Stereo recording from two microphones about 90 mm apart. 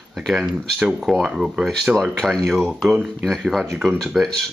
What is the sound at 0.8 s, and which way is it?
Speech, 5° right (ahead or behind).